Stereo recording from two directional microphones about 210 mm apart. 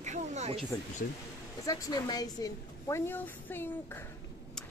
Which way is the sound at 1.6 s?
15° left (ahead or behind).